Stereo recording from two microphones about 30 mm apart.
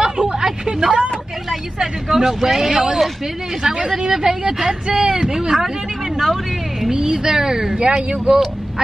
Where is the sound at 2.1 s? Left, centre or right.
Centre.